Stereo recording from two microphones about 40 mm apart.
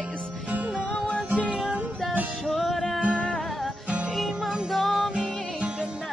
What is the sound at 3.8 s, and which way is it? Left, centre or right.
Music, right.